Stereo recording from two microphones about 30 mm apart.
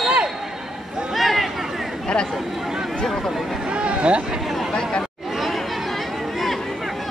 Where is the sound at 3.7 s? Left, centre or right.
Right.